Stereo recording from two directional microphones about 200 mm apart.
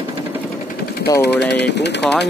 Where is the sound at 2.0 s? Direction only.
Centre (ahead or behind).